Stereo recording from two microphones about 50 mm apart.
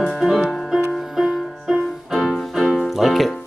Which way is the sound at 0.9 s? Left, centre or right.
Centre.